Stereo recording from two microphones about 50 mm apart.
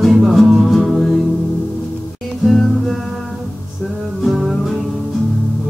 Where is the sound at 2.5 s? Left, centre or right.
Centre.